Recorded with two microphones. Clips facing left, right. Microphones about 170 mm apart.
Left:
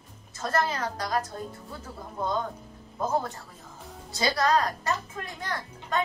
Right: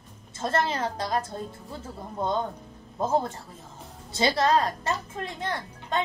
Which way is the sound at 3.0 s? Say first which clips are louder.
Right 3 dB; 25° right (ahead or behind).